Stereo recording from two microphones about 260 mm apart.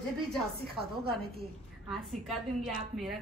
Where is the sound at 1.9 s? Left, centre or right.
Centre.